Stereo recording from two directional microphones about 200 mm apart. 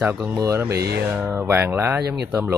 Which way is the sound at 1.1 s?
10° right (ahead or behind).